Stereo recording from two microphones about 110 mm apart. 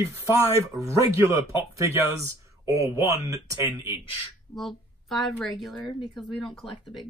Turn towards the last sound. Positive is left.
turn(degrees=0)  # may be behind; listen again after turning